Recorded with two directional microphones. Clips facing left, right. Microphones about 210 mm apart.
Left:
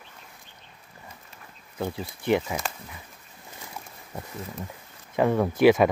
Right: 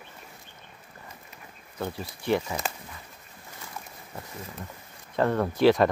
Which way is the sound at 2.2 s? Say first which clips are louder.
Left 2 dB; 15° left (ahead or behind).